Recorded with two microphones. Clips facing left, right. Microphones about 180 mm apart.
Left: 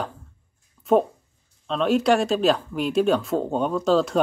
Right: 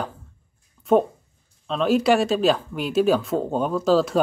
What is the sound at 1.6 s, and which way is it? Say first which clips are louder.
Speech: right 1 dB; centre (ahead or behind).